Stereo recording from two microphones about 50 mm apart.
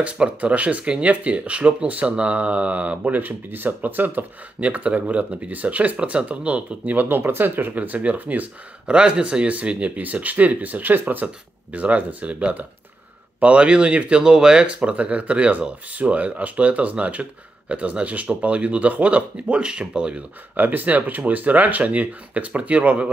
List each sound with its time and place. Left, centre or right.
0.0 s speech: right
3.2 s speech: right
7.0 s speech: right
7.7 s speech: right
20.5 s speech: right